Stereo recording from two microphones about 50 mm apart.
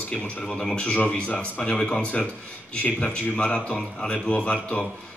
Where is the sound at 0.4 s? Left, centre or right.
Centre.